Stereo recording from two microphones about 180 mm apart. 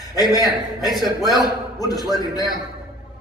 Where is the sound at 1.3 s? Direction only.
20° left (ahead or behind).